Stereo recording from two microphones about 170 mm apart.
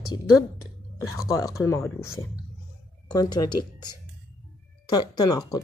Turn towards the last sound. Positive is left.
turn(degrees=20)  # may be behind; listen again after turning